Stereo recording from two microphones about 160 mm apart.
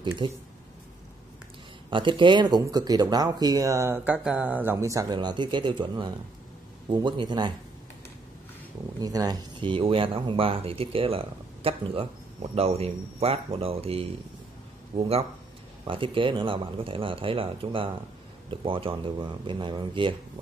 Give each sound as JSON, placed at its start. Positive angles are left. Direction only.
{"t": 0.2, "sound": "speech", "side_deg": -30}
{"t": 1.9, "sound": "speech", "side_deg": -30}
{"t": 9.0, "sound": "speech", "side_deg": -25}